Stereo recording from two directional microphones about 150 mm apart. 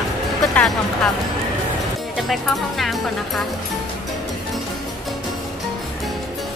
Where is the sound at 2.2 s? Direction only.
Centre (ahead or behind).